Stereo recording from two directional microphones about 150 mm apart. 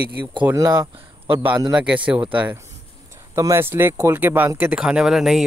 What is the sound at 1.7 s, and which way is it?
Speech, 5° right (ahead or behind).